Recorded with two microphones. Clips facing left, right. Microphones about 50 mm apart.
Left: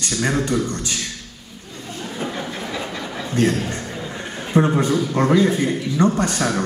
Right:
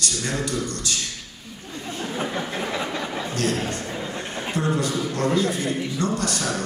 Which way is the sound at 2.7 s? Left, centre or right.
Right.